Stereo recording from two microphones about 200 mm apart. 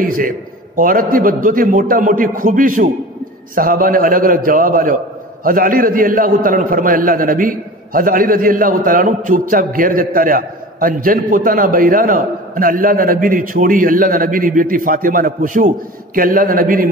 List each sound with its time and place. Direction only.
0.0 s a man's voice: 45° right (ahead or behind)